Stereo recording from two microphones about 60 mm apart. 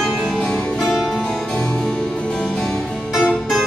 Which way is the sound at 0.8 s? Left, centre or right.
Centre.